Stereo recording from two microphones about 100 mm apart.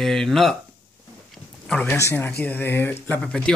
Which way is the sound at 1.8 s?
30° left (ahead or behind).